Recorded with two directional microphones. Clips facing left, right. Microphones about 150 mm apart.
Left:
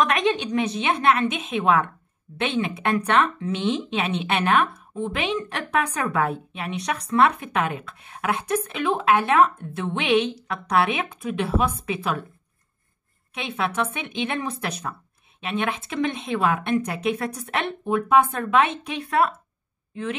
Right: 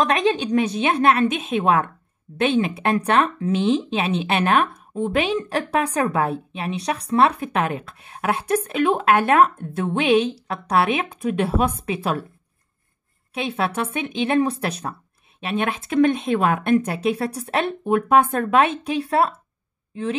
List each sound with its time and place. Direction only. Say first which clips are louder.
0.0 s speech: right 2 dB; 30° right (ahead or behind)
13.3 s speech: right 4 dB; 35° right (ahead or behind)
17.8 s speech: right 1 dB; 50° right (ahead or behind); by 20.2 s 30° right (ahead or behind)